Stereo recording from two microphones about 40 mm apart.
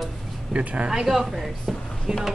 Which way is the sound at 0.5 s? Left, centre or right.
Right.